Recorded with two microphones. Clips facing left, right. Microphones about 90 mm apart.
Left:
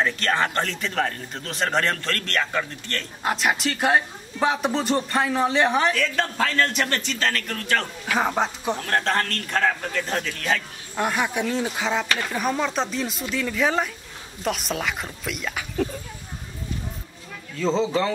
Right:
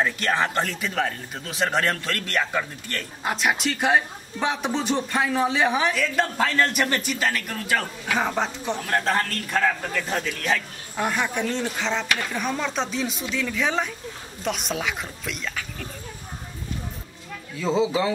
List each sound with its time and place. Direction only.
0.0 s a man's voice: 5° right (ahead or behind)
8.2 s a man's voice: 5° left (ahead or behind)
17.6 s a man's voice: 10° right (ahead or behind)